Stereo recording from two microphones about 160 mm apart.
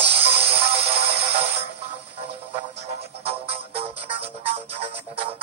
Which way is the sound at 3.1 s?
40° right (ahead or behind).